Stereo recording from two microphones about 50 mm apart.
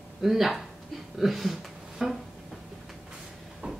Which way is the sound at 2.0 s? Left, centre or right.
Centre.